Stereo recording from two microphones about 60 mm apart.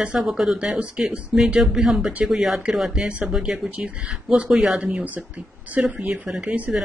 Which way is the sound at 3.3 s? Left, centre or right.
Centre.